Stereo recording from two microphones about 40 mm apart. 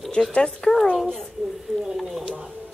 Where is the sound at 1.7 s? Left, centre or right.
Centre.